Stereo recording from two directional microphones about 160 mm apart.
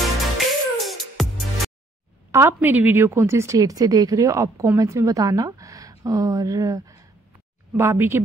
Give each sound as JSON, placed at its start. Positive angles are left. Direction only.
{"t": 0.4, "sound": "music", "side_deg": 0}
{"t": 2.3, "sound": "a woman's voice", "side_deg": -15}